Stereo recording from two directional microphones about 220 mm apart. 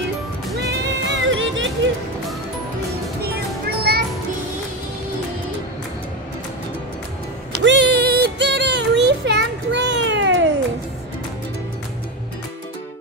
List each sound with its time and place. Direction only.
0.6 s music: 55° right (ahead or behind)
3.2 s music: 45° right (ahead or behind)
7.6 s music: 50° right (ahead or behind)